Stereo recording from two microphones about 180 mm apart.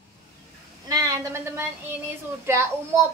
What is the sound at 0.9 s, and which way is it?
A woman's voice, 20° right (ahead or behind).